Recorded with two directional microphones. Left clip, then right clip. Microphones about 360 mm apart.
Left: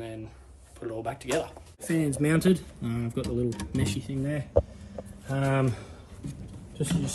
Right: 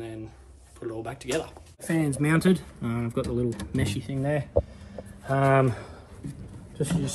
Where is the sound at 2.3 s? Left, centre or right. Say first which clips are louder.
Right 1 dB; right.